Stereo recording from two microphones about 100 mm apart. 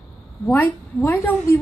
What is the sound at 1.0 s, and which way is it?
Speech, 20° left (ahead or behind).